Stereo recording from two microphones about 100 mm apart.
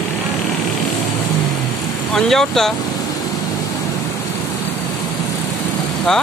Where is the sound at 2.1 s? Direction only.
5° left (ahead or behind).